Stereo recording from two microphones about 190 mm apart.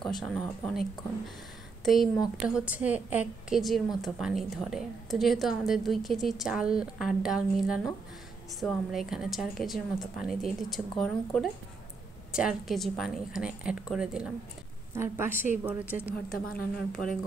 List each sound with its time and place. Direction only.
0.0 s a woman's voice: centre (ahead or behind)
1.9 s a woman's voice: centre (ahead or behind)
16.0 s a woman's voice: 10° left (ahead or behind)
16.3 s speech: 50° left (ahead or behind)